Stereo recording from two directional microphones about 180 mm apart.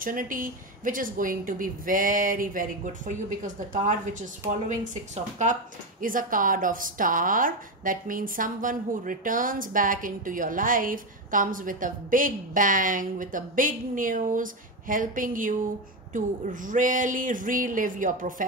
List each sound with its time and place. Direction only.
0.0 s a woman's voice: 50° right (ahead or behind)